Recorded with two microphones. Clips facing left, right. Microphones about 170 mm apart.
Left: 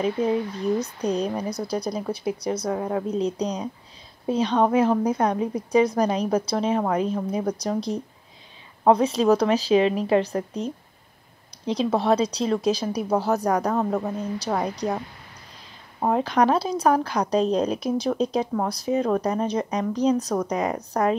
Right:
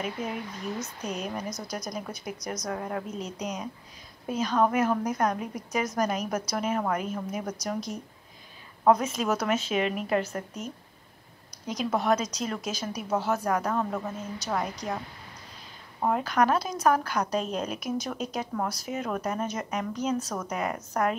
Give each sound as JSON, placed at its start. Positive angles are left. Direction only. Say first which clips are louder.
{"t": 0.0, "sound": "a woman's voice", "louder": "left 10 dB", "side_deg": 35}
{"t": 2.7, "sound": "a woman's voice", "louder": "left 4 dB", "side_deg": 20}
{"t": 3.1, "sound": "a woman's voice", "louder": "left 9 dB", "side_deg": 35}
{"t": 16.0, "sound": "a woman's voice", "louder": "left 4 dB", "side_deg": 30}